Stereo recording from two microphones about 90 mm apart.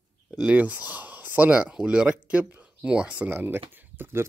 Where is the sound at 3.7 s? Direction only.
20° right (ahead or behind).